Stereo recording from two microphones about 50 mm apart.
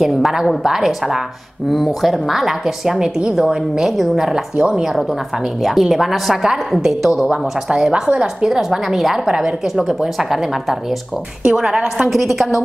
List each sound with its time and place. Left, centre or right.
0.0 s a woman's voice: centre
4.6 s a woman's voice: centre
5.6 s a woman's voice: centre
7.2 s a woman's voice: centre
8.5 s a woman's voice: centre
12.0 s a woman's voice: centre